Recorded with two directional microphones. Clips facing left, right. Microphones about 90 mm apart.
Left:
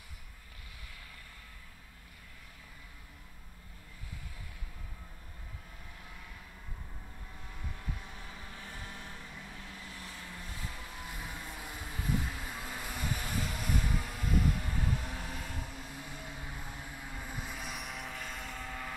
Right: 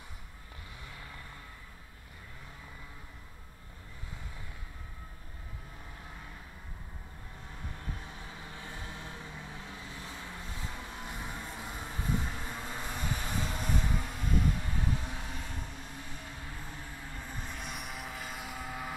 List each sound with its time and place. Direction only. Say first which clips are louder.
8.2 s vehicle: right 2 dB; 20° right (ahead or behind)
12.9 s vehicle: even; 5° left (ahead or behind)
13.3 s vehicle: right 2 dB; 25° right (ahead or behind)
13.8 s vehicle: right 1 dB; 5° left (ahead or behind)